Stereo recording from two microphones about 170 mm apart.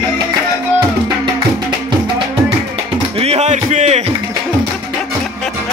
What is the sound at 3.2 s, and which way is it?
Music, 40° right (ahead or behind).